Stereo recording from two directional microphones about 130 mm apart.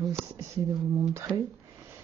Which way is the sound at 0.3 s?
25° right (ahead or behind).